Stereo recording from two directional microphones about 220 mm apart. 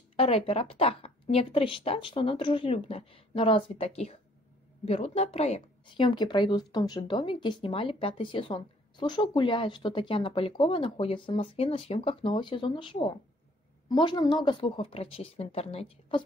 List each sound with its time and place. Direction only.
0.1 s a woman's voice: 25° left (ahead or behind)